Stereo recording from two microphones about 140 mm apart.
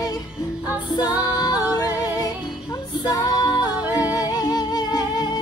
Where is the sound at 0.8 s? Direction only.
30° left (ahead or behind).